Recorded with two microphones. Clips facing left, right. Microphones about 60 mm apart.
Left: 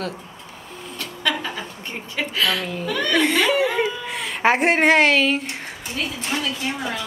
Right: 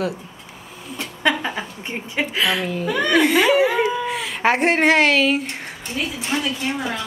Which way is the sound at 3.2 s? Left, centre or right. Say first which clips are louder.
Right 3 dB; centre.